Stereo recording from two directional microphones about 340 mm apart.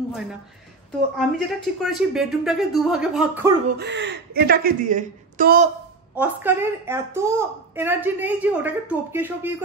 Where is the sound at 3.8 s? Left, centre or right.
Right.